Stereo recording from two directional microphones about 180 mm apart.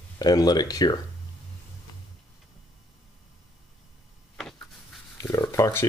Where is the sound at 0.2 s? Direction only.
20° left (ahead or behind).